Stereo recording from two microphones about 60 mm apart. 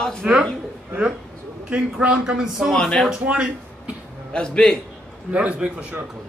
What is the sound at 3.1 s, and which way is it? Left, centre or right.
Speech, centre.